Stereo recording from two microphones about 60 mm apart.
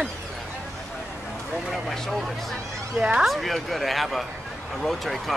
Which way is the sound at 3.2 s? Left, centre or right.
Centre.